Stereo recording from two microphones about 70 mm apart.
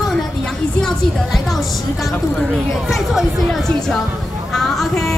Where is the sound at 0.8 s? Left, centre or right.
Centre.